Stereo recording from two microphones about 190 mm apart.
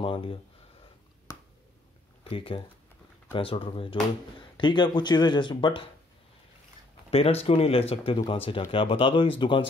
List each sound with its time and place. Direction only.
0.0 s speech: 30° left (ahead or behind)
1.3 s finger snapping: 15° left (ahead or behind)
2.2 s speech: 30° left (ahead or behind)
7.1 s speech: 30° left (ahead or behind)